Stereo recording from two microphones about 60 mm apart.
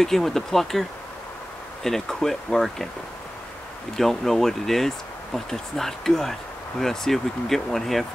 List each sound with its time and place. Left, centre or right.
0.0 s speech: centre
3.9 s speech: centre